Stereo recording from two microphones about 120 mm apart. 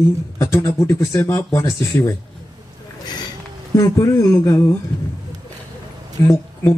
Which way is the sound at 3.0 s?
35° left (ahead or behind).